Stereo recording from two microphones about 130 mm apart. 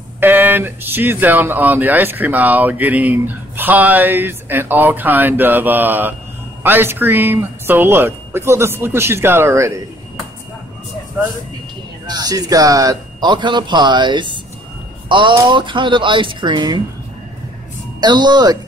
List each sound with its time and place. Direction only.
0.2 s speech: 15° right (ahead or behind)
12.1 s a man's voice: 30° right (ahead or behind)
18.0 s a man's voice: 35° right (ahead or behind)